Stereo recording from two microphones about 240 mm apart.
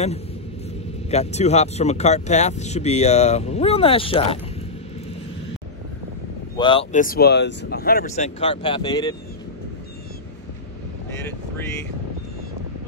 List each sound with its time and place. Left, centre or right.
1.1 s speech: left
6.5 s speech: centre